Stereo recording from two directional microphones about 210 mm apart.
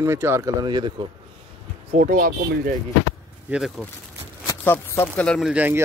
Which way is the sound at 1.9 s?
40° right (ahead or behind).